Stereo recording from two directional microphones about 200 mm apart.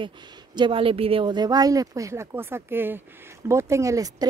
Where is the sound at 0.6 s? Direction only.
25° right (ahead or behind).